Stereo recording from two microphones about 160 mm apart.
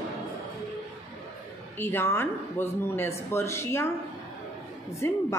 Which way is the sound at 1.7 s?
15° left (ahead or behind).